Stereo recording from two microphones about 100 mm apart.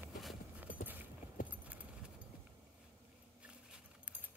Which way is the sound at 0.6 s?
15° right (ahead or behind).